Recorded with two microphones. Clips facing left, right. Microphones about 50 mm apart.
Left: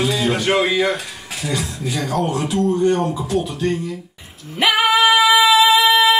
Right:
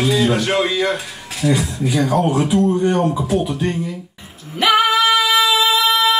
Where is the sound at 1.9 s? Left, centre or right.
Centre.